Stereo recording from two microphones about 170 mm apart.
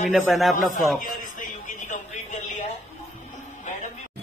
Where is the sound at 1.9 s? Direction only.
45° left (ahead or behind).